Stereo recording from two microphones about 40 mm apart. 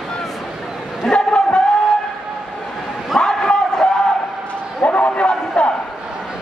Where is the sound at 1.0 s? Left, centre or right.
Left.